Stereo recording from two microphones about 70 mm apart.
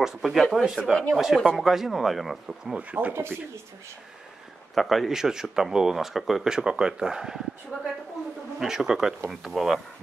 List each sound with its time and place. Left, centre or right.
0.0 s speech: centre
2.9 s speech: right
4.7 s speech: centre
8.5 s speech: centre